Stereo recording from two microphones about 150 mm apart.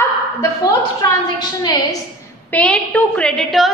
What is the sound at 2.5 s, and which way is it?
A woman's voice, 10° left (ahead or behind).